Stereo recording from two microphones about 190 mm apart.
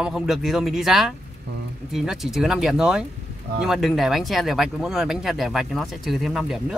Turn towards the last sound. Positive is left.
turn(degrees=0)  # may be behind; listen again after turning